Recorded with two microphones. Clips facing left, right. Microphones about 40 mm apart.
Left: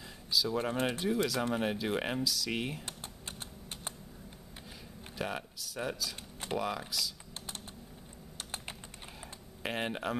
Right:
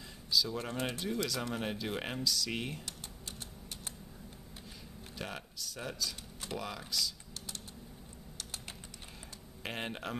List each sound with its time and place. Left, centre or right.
0.3 s speech: centre
5.1 s speech: centre
8.4 s typing: left
9.6 s speech: centre